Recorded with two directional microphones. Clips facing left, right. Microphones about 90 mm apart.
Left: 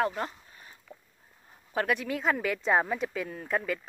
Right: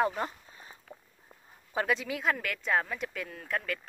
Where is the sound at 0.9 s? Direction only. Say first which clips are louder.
Left 1 dB; 30° right (ahead or behind).